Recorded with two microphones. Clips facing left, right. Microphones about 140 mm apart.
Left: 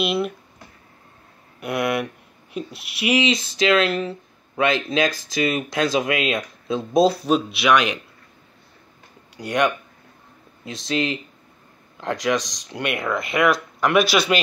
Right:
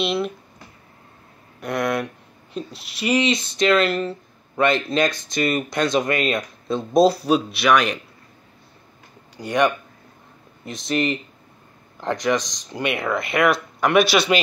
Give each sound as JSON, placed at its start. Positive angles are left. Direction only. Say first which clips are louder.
{"t": 0.0, "sound": "speech", "louder": "even", "side_deg": 5}
{"t": 1.6, "sound": "speech", "louder": "even", "side_deg": 5}
{"t": 9.4, "sound": "speech", "louder": "right 1 dB", "side_deg": 0}
{"t": 10.6, "sound": "speech", "louder": "right 1 dB", "side_deg": 90}
{"t": 12.4, "sound": "speech", "louder": "even", "side_deg": 75}
{"t": 12.6, "sound": "speech", "louder": "right 1 dB", "side_deg": 0}